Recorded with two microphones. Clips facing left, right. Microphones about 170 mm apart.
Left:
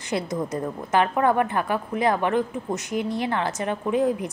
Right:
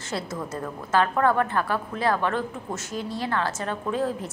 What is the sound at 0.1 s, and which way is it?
A woman's voice, 15° left (ahead or behind).